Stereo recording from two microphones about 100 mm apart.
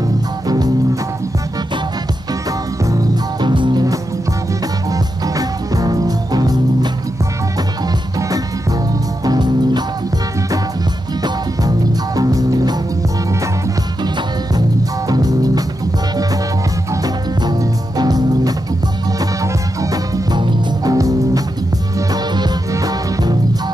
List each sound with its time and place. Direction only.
2.8 s music: 35° right (ahead or behind)
4.9 s music: 35° right (ahead or behind)
9.2 s music: 40° right (ahead or behind)
12.2 s music: 35° right (ahead or behind)
15.0 s music: 40° right (ahead or behind)
16.9 s music: 40° right (ahead or behind)
20.3 s music: 50° right (ahead or behind)
20.9 s music: 35° right (ahead or behind)